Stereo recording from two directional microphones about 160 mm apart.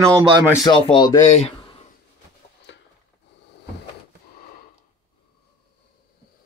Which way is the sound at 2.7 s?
90° left.